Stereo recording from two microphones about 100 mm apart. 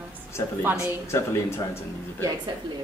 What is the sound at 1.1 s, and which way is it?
Speech, 30° left (ahead or behind).